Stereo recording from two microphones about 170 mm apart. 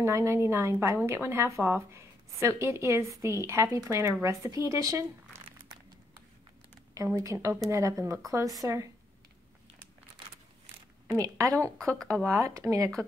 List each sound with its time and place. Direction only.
0.0 s speech: 15° right (ahead or behind)
6.9 s a woman's voice: 20° right (ahead or behind)
11.1 s a woman's voice: 20° right (ahead or behind)